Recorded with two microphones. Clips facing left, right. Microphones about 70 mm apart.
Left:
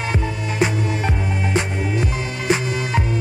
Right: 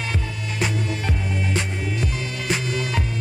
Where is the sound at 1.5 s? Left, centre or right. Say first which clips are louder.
Left 5 dB; left.